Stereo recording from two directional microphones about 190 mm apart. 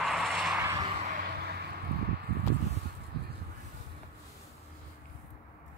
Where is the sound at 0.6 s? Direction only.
15° right (ahead or behind).